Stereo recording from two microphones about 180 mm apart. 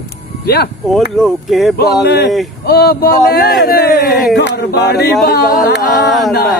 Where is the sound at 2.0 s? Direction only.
65° left (ahead or behind).